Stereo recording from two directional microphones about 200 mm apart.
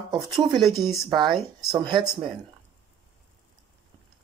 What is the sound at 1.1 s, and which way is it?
Speech, 20° right (ahead or behind).